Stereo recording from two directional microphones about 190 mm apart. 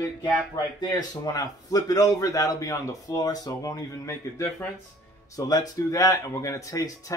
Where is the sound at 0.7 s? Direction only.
20° left (ahead or behind).